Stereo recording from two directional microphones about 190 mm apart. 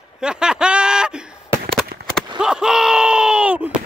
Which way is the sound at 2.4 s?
5° right (ahead or behind).